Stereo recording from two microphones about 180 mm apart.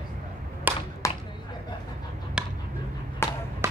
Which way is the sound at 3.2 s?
15° left (ahead or behind).